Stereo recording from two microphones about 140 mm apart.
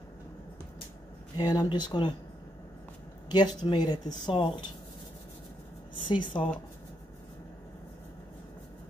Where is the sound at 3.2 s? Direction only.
30° left (ahead or behind).